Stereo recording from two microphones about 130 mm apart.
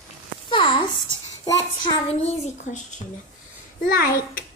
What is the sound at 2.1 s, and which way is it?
Speech, 50° left (ahead or behind).